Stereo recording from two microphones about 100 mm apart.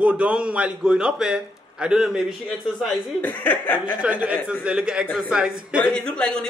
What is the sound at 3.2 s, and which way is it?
Speech, 15° left (ahead or behind).